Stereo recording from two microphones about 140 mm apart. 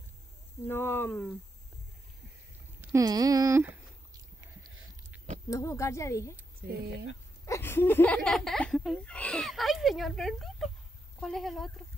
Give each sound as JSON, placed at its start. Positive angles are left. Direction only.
{"t": 0.7, "sound": "speech", "side_deg": 15}
{"t": 2.8, "sound": "speech", "side_deg": -25}
{"t": 5.1, "sound": "a sound", "side_deg": -10}
{"t": 5.5, "sound": "a woman's voice", "side_deg": 20}
{"t": 7.4, "sound": "speech", "side_deg": 20}